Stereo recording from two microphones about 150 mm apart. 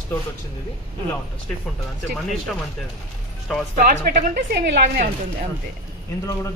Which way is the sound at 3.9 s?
70° right (ahead or behind).